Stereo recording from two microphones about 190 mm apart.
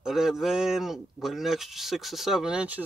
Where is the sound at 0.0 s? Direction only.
Centre (ahead or behind).